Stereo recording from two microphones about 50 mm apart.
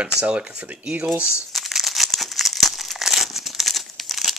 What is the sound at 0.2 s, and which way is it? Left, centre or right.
Speech, right.